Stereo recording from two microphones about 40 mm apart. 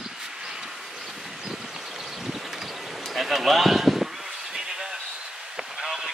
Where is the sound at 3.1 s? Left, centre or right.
Centre.